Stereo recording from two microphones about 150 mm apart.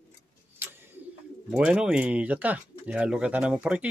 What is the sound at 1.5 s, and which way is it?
Speech, 5° right (ahead or behind).